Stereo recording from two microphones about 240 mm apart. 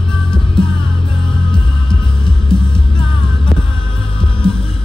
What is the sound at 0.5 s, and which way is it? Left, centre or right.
Music, centre.